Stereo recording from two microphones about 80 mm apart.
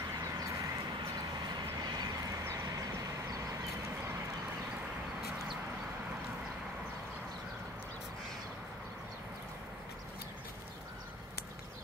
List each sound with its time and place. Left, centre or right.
0.1 s vehicle: right
1.5 s vehicle: right